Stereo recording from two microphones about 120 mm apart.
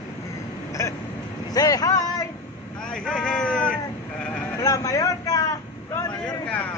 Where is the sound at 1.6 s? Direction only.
30° left (ahead or behind).